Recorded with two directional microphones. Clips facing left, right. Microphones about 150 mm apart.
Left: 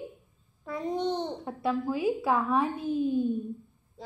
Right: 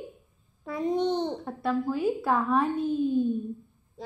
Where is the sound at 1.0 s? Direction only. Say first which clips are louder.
Right 3 dB; centre (ahead or behind).